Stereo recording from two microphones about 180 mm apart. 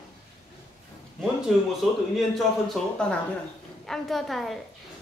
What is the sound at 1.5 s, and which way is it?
Speech, centre (ahead or behind).